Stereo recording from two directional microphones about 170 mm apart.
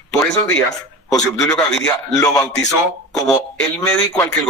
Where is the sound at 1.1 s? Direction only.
5° left (ahead or behind).